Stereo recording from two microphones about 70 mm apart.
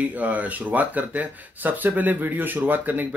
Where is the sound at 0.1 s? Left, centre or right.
Right.